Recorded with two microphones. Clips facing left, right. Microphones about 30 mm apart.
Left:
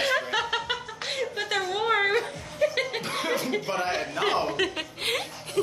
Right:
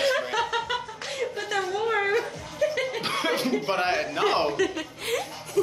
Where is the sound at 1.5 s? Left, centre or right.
Left.